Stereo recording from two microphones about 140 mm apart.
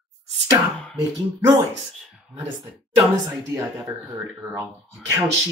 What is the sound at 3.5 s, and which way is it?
A woman's voice, 15° right (ahead or behind).